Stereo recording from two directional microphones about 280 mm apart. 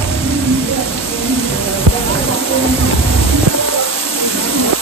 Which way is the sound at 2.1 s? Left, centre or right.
Centre.